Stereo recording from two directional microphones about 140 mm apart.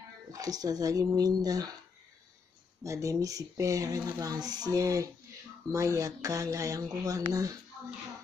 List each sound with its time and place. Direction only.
0.3 s speech: 25° right (ahead or behind)
2.8 s speech: 25° right (ahead or behind)